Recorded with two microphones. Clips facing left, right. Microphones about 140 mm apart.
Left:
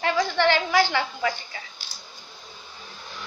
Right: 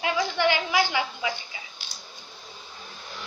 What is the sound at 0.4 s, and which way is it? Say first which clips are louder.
A woman's voice: left 3 dB; 10° right (ahead or behind).